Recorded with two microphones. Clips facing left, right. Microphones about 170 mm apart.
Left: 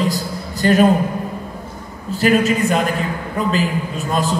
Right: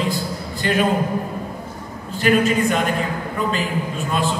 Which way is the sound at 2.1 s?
40° left (ahead or behind).